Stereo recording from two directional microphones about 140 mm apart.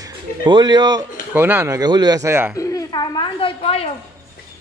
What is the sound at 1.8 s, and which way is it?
Speech, 30° right (ahead or behind).